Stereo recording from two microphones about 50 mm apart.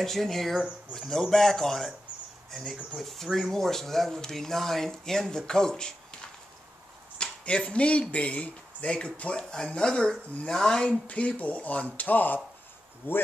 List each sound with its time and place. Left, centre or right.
0.0 s speech: centre
7.2 s speech: centre
11.1 s speech: left